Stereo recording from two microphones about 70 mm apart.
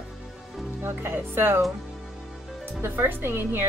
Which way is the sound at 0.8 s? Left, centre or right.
Right.